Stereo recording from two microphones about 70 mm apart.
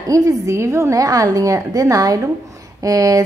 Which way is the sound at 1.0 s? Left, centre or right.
Right.